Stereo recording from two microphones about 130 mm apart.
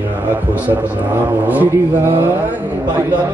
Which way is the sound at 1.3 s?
15° right (ahead or behind).